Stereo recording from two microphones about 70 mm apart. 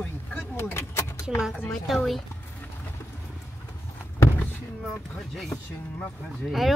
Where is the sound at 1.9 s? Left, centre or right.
Centre.